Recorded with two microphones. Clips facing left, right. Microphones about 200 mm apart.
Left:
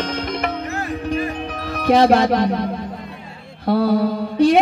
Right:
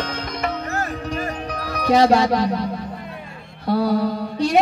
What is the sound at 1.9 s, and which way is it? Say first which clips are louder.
Music: left 1 dB; 55° left (ahead or behind).